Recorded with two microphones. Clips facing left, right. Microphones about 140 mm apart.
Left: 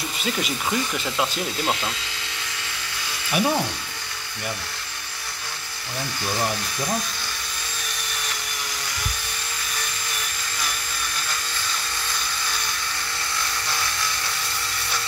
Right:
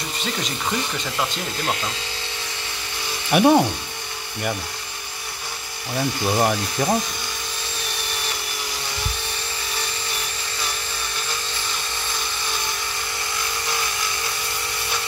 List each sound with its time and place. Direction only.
0.2 s speech: 5° left (ahead or behind)
3.3 s speech: 55° right (ahead or behind)
6.3 s speech: 60° right (ahead or behind)